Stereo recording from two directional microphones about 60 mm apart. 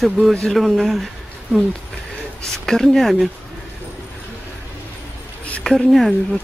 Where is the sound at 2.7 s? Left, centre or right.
Centre.